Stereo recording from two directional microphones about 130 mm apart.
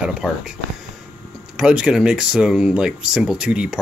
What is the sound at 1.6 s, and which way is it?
Speech, 5° right (ahead or behind).